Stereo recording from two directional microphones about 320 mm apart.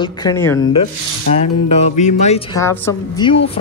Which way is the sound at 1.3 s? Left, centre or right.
Centre.